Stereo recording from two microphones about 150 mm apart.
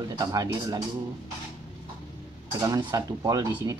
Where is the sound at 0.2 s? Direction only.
25° right (ahead or behind).